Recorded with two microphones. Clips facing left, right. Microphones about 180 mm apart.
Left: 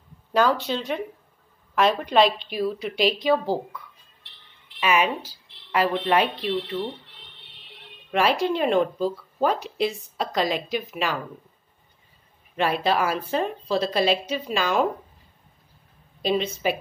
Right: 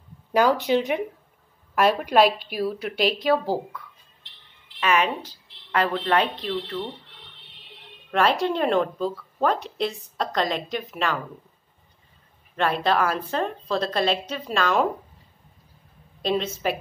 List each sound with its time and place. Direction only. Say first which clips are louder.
0.3 s a woman's voice: right 2 dB; 15° right (ahead or behind); by 6.8 s 10° left (ahead or behind)
8.1 s a woman's voice: even; 5° left (ahead or behind)
12.5 s a woman's voice: even; 5° left (ahead or behind)
16.2 s a woman's voice: left 1 dB; centre (ahead or behind)